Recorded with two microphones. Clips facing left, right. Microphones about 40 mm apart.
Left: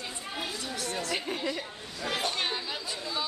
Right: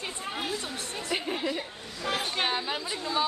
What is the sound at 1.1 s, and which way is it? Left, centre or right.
Chatter, centre.